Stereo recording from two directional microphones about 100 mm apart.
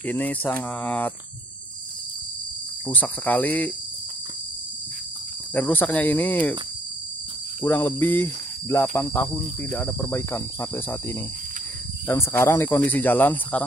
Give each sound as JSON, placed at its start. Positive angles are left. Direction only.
{"t": 0.0, "sound": "speech", "side_deg": 15}
{"t": 2.9, "sound": "speech", "side_deg": 15}
{"t": 5.5, "sound": "speech", "side_deg": 20}
{"t": 7.6, "sound": "speech", "side_deg": 20}
{"t": 10.1, "sound": "speech", "side_deg": 25}